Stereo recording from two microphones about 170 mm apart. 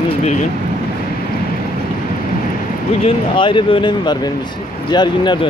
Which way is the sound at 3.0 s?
30° left (ahead or behind).